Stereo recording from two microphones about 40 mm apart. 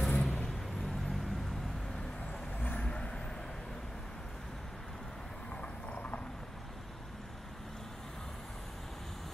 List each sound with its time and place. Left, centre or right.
0.0 s vehicle: left
2.9 s vehicle: centre
5.9 s horse: left